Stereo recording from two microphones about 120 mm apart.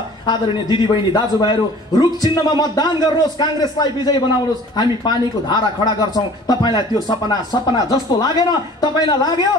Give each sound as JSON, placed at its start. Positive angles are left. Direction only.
{"t": 0.3, "sound": "speech", "side_deg": 40}